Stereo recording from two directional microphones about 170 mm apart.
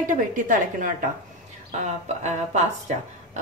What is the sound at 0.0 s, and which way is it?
A woman's voice, 50° right (ahead or behind).